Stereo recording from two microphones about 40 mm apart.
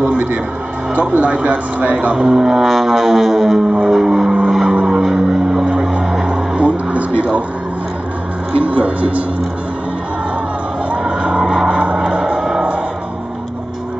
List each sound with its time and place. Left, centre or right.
0.9 s speech: right
2.1 s music: centre
2.7 s music: centre
3.5 s vehicle: centre
6.6 s vehicle: right
8.5 s speech: right
11.1 s a sound: right
11.4 s vehicle: centre
11.7 s a sound: right
12.4 s music: centre